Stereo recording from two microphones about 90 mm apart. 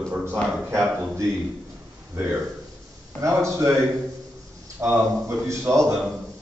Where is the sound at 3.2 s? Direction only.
35° right (ahead or behind).